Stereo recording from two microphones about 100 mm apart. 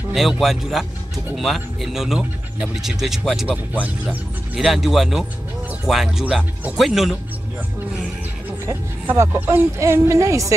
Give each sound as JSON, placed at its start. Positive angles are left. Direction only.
{"t": 0.1, "sound": "speech", "side_deg": 0}
{"t": 3.8, "sound": "speech", "side_deg": -15}
{"t": 4.6, "sound": "speech", "side_deg": -5}
{"t": 9.0, "sound": "a woman's voice", "side_deg": -25}